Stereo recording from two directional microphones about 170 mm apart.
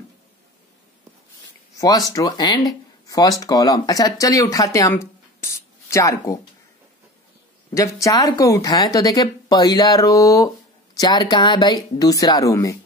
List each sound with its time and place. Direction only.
1.8 s speech: 20° left (ahead or behind)
7.7 s speech: 20° left (ahead or behind)